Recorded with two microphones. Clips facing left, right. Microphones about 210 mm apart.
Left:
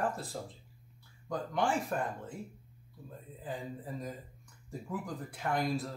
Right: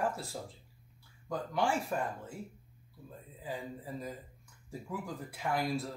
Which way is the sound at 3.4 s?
5° right (ahead or behind).